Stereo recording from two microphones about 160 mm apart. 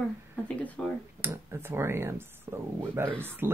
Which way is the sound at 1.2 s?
15° right (ahead or behind).